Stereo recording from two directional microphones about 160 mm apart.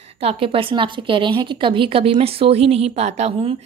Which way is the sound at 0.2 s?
35° right (ahead or behind).